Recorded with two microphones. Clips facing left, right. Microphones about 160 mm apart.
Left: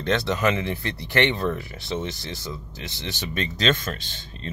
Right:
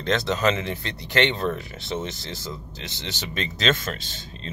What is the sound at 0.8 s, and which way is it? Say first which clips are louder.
Speech: even; 20° right (ahead or behind).